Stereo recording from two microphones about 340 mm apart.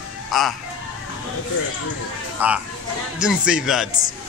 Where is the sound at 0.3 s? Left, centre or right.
Centre.